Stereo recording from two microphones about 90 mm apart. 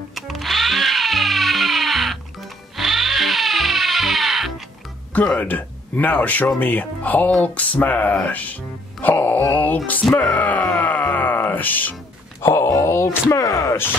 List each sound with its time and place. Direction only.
0.1 s music: centre (ahead or behind)
5.1 s speech: 15° left (ahead or behind)
9.0 s a sound: 25° left (ahead or behind)
10.3 s speech: 20° left (ahead or behind)
10.8 s music: 20° left (ahead or behind)
12.4 s speech: 30° left (ahead or behind)